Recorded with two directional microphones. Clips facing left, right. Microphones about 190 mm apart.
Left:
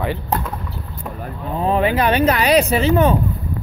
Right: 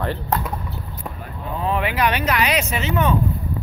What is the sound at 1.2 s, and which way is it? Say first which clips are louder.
Speech: left 5 dB; 35° left (ahead or behind).